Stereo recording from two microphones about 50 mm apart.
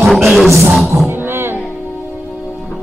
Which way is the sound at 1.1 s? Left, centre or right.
Right.